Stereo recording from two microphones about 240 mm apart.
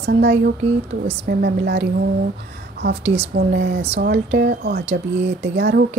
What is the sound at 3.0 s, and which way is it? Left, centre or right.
Speech, right.